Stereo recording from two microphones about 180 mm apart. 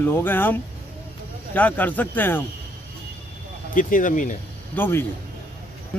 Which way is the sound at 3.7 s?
50° left (ahead or behind).